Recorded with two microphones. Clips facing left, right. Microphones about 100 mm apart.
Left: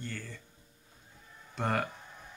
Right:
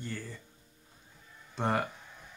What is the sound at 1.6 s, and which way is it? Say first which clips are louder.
Speech: right 1 dB; 10° right (ahead or behind).